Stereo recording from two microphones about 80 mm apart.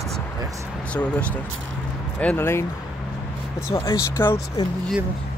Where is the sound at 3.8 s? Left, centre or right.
Left.